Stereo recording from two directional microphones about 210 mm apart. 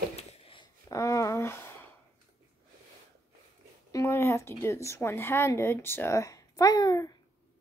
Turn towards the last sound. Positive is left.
turn(degrees=20)  # may be behind; listen again after turning